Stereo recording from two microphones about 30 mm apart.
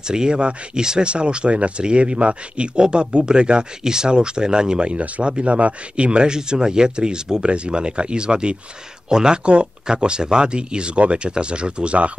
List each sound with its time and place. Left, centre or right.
0.0 s speech: right
3.8 s speech: right
7.4 s speech: right